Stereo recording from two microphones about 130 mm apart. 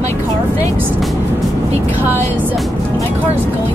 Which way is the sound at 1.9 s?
15° right (ahead or behind).